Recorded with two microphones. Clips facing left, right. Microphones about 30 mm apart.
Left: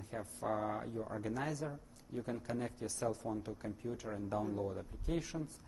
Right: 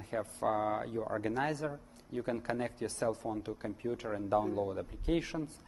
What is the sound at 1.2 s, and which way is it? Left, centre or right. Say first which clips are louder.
A man's voice: right 4 dB; right.